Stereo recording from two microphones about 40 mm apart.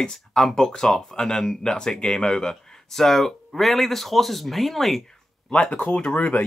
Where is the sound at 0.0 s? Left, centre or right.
Centre.